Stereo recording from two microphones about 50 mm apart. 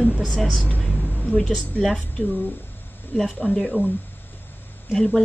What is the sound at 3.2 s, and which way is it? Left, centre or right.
Speech, centre.